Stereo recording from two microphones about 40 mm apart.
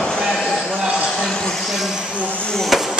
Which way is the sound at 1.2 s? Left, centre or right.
Left.